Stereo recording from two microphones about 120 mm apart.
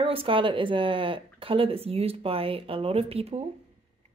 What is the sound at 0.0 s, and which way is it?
A woman's voice, 50° right (ahead or behind).